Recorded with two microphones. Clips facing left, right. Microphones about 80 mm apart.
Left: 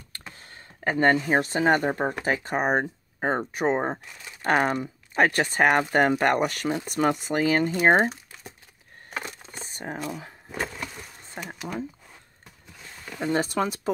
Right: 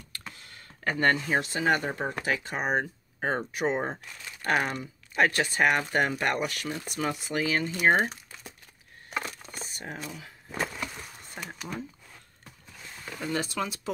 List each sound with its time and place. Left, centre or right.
0.3 s a sound: left
0.8 s speech: left
1.4 s speech: left
2.8 s speech: left
3.5 s speech: left
4.0 s crumpling: centre
4.5 s speech: left
7.2 s speech: left
8.1 s crumpling: centre
9.1 s a sound: left
9.5 s a sound: left
10.5 s a sound: centre
13.2 s speech: left